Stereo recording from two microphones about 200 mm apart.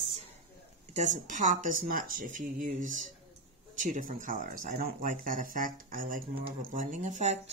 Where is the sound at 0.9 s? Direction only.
35° right (ahead or behind).